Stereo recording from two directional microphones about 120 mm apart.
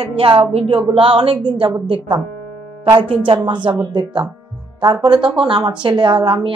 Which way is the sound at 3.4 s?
40° right (ahead or behind).